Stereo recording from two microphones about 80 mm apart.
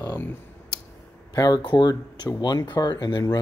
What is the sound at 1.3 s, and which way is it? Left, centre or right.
Speech, left.